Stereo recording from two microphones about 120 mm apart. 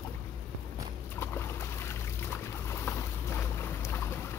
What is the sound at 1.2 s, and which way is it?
Boat, 20° left (ahead or behind).